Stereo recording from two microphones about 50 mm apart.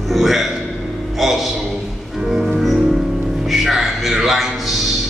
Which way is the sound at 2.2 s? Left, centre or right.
Centre.